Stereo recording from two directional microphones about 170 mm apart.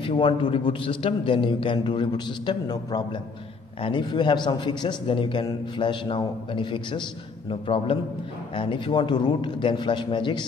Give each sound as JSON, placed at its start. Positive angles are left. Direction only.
{"t": 0.0, "sound": "a man's voice", "side_deg": 30}